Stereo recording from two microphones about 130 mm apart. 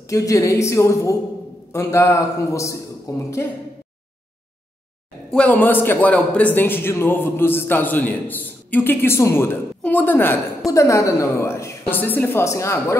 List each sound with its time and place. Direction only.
0.1 s a man's voice: 25° left (ahead or behind)
5.3 s a man's voice: 10° left (ahead or behind)